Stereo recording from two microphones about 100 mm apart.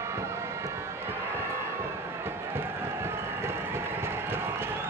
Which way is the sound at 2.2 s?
25° right (ahead or behind).